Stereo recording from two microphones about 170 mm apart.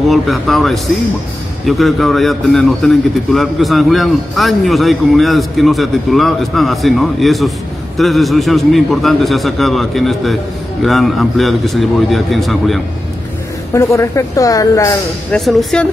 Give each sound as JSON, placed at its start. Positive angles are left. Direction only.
{"t": 0.1, "sound": "a man's voice", "side_deg": 0}
{"t": 13.7, "sound": "a woman's voice", "side_deg": 15}
{"t": 15.3, "sound": "a man's voice", "side_deg": 0}